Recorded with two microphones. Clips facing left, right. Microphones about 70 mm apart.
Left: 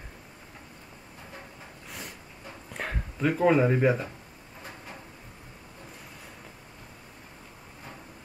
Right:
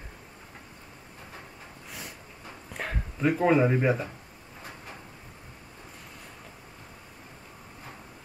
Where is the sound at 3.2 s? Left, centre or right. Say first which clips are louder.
Even; centre.